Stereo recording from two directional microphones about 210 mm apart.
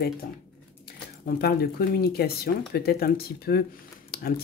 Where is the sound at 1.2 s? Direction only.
45° left (ahead or behind).